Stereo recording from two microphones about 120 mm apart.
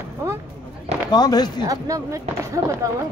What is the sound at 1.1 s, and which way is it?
Speech, 35° left (ahead or behind).